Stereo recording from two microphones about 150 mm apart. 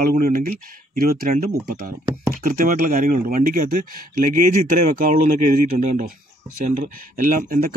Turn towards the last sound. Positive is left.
turn(degrees=-70)  # may be behind; listen again after turning